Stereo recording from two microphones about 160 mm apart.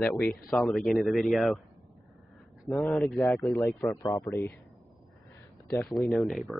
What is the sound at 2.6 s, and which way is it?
Speech, centre (ahead or behind).